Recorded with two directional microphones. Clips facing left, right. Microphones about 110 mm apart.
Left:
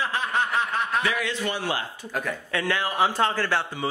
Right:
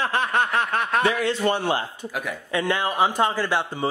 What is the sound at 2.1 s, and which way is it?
A man's voice, 15° right (ahead or behind).